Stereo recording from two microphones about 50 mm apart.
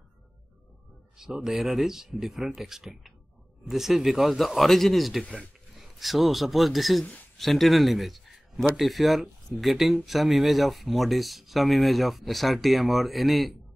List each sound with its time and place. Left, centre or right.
1.1 s speech: centre
5.2 s speech: left
5.8 s a man's voice: centre